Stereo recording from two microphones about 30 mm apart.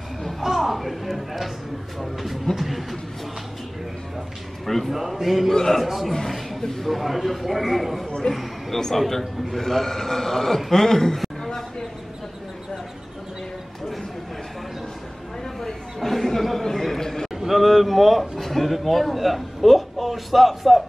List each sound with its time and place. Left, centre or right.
0.7 s speech: centre
2.5 s speech: centre
4.6 s a man's voice: centre
4.9 s speech: centre
5.5 s a man's voice: centre
6.2 s speech: centre
6.6 s a man's voice: centre
6.9 s a man's voice: centre
9.6 s a man's voice: centre
15.6 s speech: centre
17.5 s a sound: centre
18.4 s a man's voice: centre